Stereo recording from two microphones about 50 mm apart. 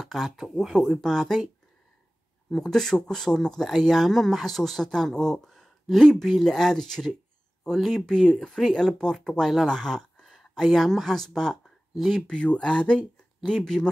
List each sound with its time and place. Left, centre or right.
0.0 s speech: centre
1.0 s speech: centre
2.5 s speech: centre